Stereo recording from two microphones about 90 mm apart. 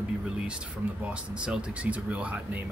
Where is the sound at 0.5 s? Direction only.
10° right (ahead or behind).